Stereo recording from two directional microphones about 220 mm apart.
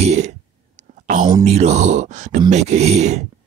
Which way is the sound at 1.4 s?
30° right (ahead or behind).